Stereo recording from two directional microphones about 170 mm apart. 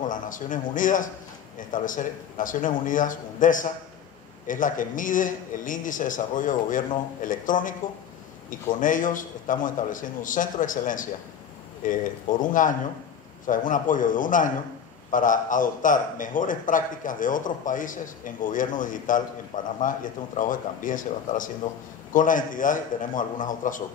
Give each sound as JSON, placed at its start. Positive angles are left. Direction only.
{"t": 0.1, "sound": "a man's voice", "side_deg": 50}